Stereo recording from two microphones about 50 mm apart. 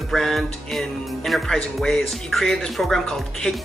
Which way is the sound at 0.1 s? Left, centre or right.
Centre.